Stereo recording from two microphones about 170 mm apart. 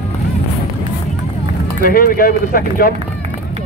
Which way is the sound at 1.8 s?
60° left (ahead or behind).